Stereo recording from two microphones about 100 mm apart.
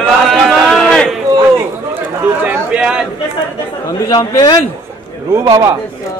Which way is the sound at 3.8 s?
40° left (ahead or behind).